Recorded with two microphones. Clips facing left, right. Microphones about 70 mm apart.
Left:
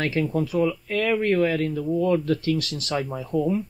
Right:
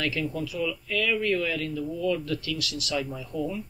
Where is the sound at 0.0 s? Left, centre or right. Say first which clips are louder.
Left 5 dB; left.